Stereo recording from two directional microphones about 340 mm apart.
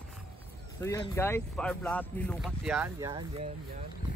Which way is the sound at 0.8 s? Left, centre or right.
Centre.